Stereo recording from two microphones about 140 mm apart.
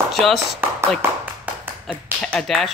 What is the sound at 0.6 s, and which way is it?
Speech, 15° right (ahead or behind).